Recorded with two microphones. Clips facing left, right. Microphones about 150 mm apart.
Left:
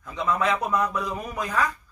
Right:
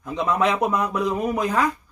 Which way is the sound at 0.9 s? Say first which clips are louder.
Right 7 dB; 55° right (ahead or behind).